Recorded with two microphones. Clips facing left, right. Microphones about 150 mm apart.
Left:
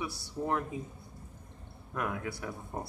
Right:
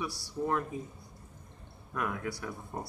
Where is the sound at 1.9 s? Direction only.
20° left (ahead or behind).